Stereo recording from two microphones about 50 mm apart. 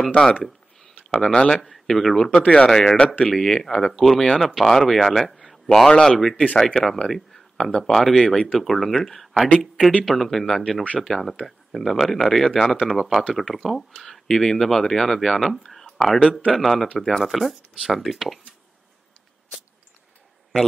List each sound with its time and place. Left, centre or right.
0.1 s speech: centre
0.4 s a sound: centre
1.1 s speech: centre
1.6 s speech: centre
2.3 s speech: centre
3.6 s speech: centre
6.3 s speech: left
6.6 s speech: centre
8.5 s speech: centre